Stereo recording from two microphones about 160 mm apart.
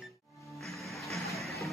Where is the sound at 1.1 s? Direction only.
Centre (ahead or behind).